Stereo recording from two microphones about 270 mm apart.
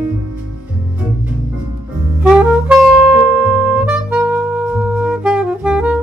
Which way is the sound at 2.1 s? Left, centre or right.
Centre.